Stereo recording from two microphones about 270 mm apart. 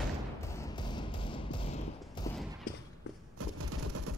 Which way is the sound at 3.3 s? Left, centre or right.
Right.